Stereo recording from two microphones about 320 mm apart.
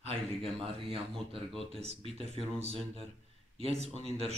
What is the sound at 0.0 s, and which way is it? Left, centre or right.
A man's voice, centre.